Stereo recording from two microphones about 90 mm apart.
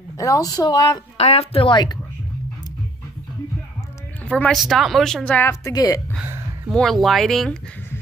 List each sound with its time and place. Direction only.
0.2 s speech: 40° left (ahead or behind)
1.4 s speech: 80° left; by 2.0 s 60° left (ahead or behind)
4.3 s speech: 10° left (ahead or behind)
4.6 s speech: centre (ahead or behind)
5.4 s a woman's voice: 35° left (ahead or behind)
6.2 s a sound: 25° right (ahead or behind)
6.7 s speech: 5° left (ahead or behind)